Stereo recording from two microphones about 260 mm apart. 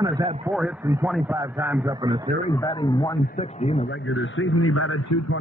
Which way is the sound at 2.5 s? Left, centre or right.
Centre.